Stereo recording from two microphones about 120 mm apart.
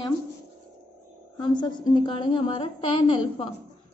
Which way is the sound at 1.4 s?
40° left (ahead or behind).